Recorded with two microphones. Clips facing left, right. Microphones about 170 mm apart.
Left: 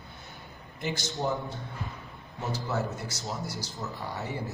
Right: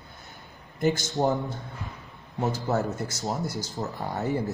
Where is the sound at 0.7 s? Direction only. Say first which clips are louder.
Right 8 dB; 50° right (ahead or behind).